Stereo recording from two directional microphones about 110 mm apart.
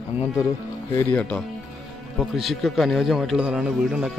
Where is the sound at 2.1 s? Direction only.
Centre (ahead or behind).